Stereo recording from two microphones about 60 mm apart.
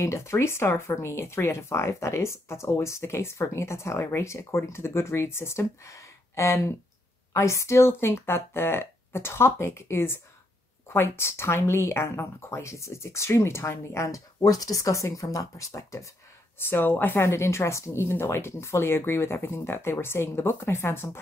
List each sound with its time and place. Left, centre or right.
0.0 s speech: left
16.5 s speech: left
17.3 s speech: left